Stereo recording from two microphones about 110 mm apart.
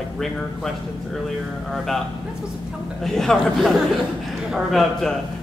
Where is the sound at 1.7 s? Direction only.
Centre (ahead or behind).